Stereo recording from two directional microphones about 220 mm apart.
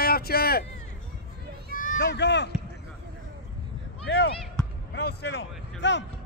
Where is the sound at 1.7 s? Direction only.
35° left (ahead or behind).